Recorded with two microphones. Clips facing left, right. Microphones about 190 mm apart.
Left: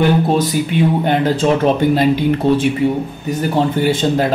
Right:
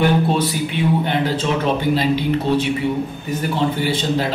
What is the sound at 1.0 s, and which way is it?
Speech, 45° left (ahead or behind).